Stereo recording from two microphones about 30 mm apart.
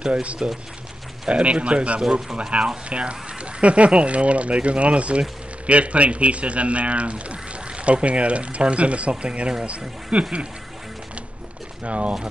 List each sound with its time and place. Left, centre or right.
0.0 s speech: right
2.0 s speech: right
2.9 s speech: right
11.8 s speech: right